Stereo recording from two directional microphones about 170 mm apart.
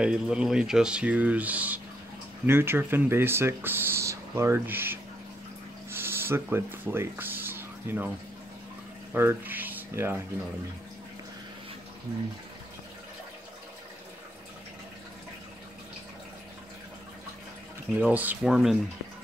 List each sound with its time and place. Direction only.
0.0 s speech: 5° right (ahead or behind)
5.9 s a sound: 15° right (ahead or behind)
9.1 s speech: 15° right (ahead or behind)
17.9 s speech: 10° right (ahead or behind)